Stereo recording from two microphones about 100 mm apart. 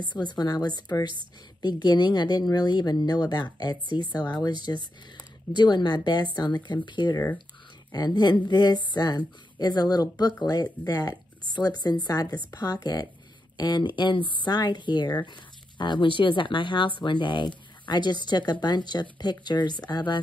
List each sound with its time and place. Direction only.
0.0 s a woman's voice: 50° left (ahead or behind)